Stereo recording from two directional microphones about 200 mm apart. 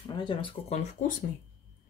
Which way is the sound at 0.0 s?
20° left (ahead or behind).